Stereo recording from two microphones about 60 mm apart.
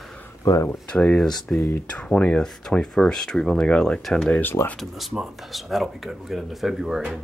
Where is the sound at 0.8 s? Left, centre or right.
Left.